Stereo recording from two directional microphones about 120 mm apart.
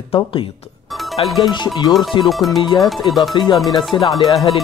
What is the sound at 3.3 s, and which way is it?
Speech, 40° left (ahead or behind).